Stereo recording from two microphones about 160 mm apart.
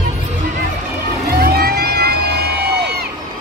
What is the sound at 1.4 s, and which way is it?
Music, 75° right (ahead or behind).